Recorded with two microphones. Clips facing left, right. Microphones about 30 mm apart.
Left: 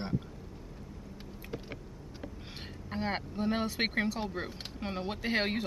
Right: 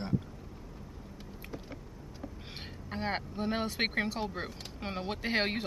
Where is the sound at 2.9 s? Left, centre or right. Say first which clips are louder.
Even; centre.